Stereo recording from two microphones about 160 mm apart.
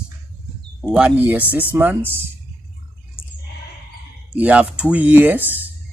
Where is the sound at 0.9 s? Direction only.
10° right (ahead or behind).